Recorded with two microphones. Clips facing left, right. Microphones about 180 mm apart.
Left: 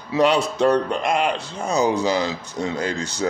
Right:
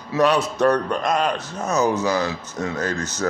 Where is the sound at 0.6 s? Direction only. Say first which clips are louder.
Left 1 dB; 25° left (ahead or behind).